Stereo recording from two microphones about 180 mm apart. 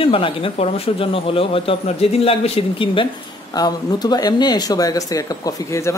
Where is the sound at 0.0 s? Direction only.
30° left (ahead or behind).